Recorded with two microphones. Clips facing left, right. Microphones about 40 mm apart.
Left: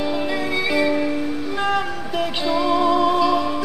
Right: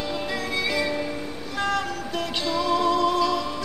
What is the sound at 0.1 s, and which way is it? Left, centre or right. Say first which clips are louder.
Music: left 5 dB; centre.